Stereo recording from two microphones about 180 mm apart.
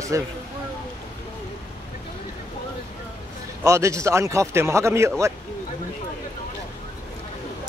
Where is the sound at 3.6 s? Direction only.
15° right (ahead or behind).